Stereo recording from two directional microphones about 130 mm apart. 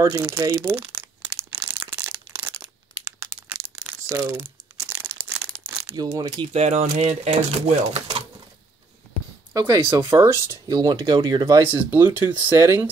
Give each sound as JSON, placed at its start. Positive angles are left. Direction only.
{"t": 0.0, "sound": "speech", "side_deg": -20}
{"t": 0.7, "sound": "crumpling", "side_deg": -15}
{"t": 1.7, "sound": "crushing", "side_deg": -20}
{"t": 4.1, "sound": "crumpling", "side_deg": -15}
{"t": 6.1, "sound": "speech", "side_deg": -30}
{"t": 6.5, "sound": "speech", "side_deg": -60}
{"t": 9.5, "sound": "speech", "side_deg": -30}
{"t": 11.7, "sound": "speech", "side_deg": -15}